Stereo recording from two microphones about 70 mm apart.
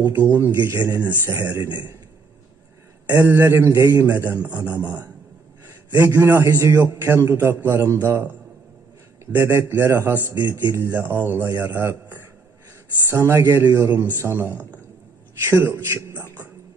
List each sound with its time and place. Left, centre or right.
0.1 s speech: right
3.1 s speech: right